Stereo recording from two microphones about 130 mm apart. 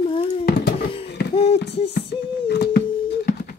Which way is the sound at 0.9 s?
45° left (ahead or behind).